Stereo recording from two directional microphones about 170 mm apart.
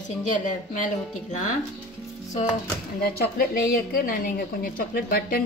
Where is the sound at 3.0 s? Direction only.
65° left (ahead or behind).